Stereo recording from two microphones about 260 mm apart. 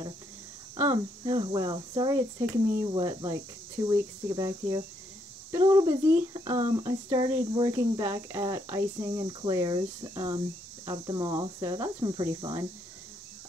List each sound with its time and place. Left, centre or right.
0.7 s speech: centre